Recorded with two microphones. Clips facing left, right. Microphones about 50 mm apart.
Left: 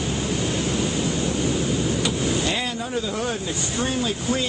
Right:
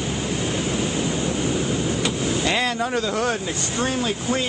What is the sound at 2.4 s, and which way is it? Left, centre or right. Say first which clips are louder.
Vehicle: right 4 dB; right.